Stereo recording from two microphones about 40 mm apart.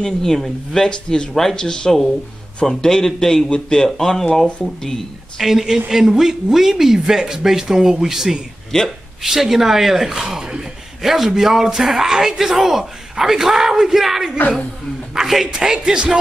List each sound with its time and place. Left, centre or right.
0.0 s speech: centre
1.3 s a man's voice: centre
1.6 s a man's voice: centre
5.4 s a man's voice: centre
8.7 s a man's voice: centre
9.2 s a man's voice: centre
15.4 s music: centre